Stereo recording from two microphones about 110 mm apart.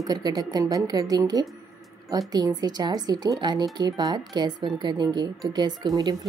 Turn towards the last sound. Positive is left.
turn(degrees=-35)  # may be behind; listen again after turning